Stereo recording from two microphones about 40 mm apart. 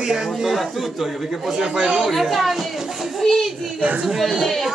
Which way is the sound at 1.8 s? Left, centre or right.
Right.